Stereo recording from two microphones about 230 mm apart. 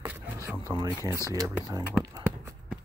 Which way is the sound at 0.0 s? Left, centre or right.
Centre.